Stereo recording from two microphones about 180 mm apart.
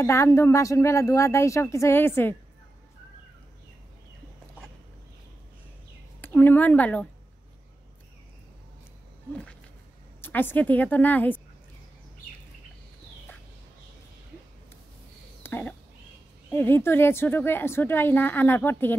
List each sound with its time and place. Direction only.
0.0 s a woman's voice: 15° left (ahead or behind)
6.2 s speech: 10° left (ahead or behind)
10.2 s a woman's voice: 10° left (ahead or behind)
15.4 s a sound: 10° left (ahead or behind)
16.4 s a woman's voice: 10° left (ahead or behind)